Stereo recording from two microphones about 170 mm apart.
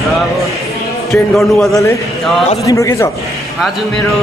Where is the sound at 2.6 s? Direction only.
20° left (ahead or behind).